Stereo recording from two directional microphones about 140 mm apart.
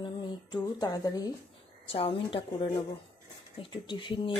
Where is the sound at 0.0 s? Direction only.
30° left (ahead or behind).